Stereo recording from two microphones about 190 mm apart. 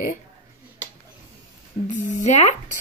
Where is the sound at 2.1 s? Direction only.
35° left (ahead or behind).